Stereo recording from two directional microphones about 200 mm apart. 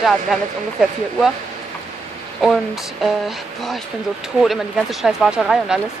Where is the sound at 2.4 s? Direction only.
Centre (ahead or behind).